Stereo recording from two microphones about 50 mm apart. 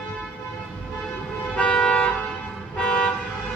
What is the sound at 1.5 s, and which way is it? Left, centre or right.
Toot, centre.